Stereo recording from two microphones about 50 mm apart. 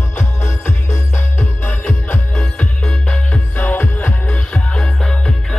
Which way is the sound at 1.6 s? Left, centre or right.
Left.